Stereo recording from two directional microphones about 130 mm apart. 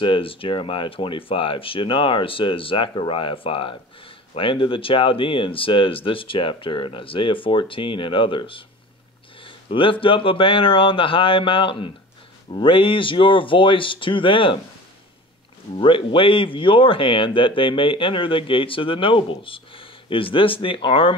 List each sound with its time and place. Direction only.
0.0 s speech: 40° left (ahead or behind)
15.8 s speech: 40° left (ahead or behind)